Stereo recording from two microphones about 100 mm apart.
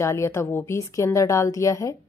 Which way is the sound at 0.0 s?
30° left (ahead or behind).